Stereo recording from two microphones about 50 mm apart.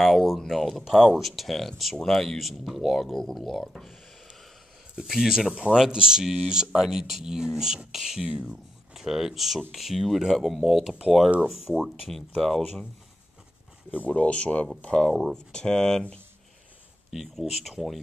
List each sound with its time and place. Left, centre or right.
0.0 s speech: centre
5.0 s speech: centre
5.7 s speech: centre
12.1 s speech: centre
14.0 s speech: left
17.1 s speech: centre